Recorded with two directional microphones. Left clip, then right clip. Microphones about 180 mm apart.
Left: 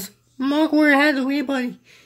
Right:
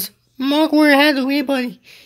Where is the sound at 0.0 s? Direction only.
15° right (ahead or behind).